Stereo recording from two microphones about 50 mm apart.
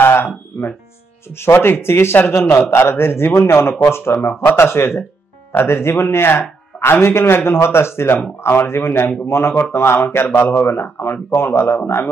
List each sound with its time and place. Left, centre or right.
0.0 s music: left
1.4 s a man's voice: left